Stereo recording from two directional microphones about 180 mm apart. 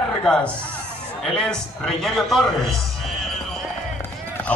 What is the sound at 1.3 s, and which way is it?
A man's voice, 5° left (ahead or behind).